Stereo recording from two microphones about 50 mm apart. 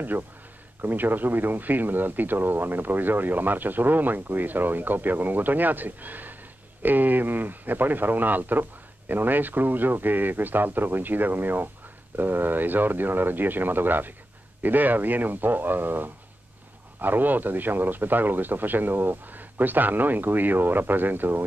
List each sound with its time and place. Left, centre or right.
0.8 s speech: right